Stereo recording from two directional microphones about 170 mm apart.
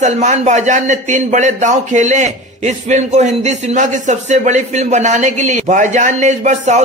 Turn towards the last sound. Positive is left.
turn(degrees=-45)  # may be behind; listen again after turning